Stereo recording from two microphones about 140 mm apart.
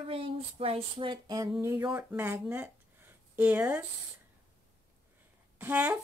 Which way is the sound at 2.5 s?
15° right (ahead or behind).